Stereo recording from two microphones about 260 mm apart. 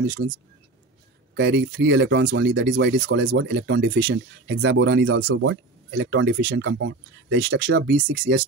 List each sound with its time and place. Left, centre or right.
1.3 s speech: right